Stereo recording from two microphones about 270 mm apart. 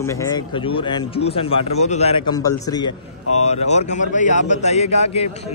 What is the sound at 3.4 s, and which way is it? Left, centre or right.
A man's voice, left.